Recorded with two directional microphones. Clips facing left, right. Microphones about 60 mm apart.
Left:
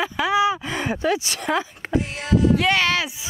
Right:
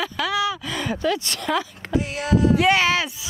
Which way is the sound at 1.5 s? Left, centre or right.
Left.